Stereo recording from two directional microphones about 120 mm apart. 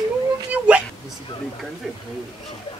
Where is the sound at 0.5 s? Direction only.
10° right (ahead or behind).